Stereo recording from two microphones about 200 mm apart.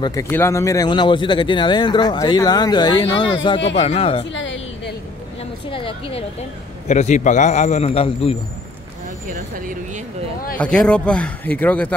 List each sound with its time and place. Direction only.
0.0 s speech: 15° left (ahead or behind)
4.3 s music: 65° left (ahead or behind)
5.7 s a man's voice: 25° left (ahead or behind)
9.3 s speech: 40° right (ahead or behind)
10.6 s speech: 5° left (ahead or behind)